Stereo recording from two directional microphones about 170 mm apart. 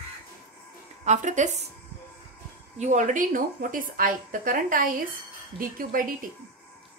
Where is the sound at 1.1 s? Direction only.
45° right (ahead or behind).